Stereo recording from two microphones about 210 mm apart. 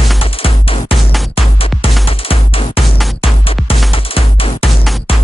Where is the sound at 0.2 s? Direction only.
25° left (ahead or behind).